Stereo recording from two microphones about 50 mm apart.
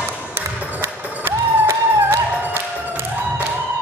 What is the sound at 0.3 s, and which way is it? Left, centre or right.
Music, right.